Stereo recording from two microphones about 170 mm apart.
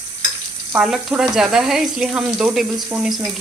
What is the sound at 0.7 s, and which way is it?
A woman's voice, centre (ahead or behind).